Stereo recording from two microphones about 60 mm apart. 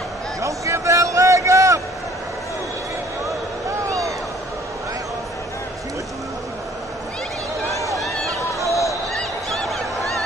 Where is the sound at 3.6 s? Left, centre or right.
Right.